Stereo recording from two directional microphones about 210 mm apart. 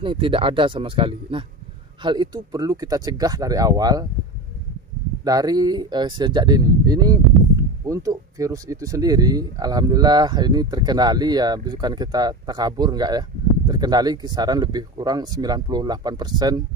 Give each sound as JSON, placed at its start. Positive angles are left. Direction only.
{"t": 0.0, "sound": "speech", "side_deg": -25}
{"t": 5.2, "sound": "speech", "side_deg": -15}